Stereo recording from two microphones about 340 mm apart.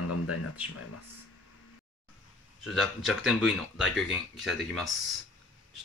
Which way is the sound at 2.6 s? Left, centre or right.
Centre.